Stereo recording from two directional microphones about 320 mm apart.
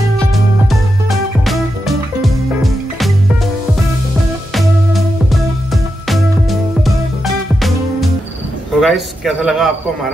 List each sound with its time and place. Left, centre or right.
0.7 s music: centre
4.6 s music: centre
8.7 s speech: centre